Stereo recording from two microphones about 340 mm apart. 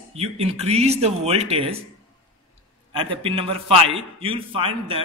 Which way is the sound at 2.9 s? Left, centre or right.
Centre.